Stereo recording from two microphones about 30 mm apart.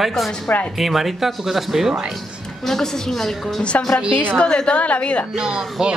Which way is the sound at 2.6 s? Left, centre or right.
Centre.